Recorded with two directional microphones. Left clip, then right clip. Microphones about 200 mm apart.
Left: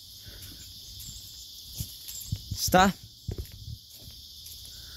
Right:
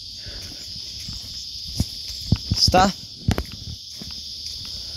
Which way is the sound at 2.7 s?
20° left (ahead or behind).